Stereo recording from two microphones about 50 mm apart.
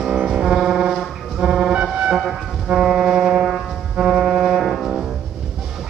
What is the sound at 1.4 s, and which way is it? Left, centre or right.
Vehicle, centre.